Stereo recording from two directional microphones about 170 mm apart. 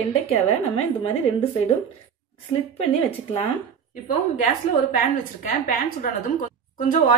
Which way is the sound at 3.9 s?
50° left (ahead or behind).